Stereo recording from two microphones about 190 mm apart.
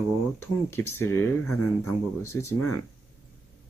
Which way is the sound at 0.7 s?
15° left (ahead or behind).